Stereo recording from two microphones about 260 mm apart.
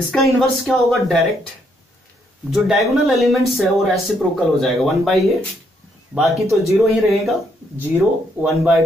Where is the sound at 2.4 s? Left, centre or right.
Centre.